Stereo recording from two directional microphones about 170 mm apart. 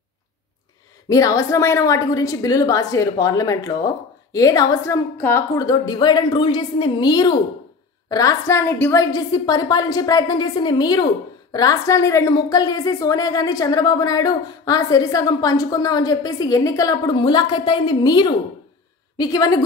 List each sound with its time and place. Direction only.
1.0 s a woman's voice: 20° left (ahead or behind)